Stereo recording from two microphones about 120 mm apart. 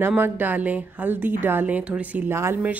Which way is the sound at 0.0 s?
15° right (ahead or behind).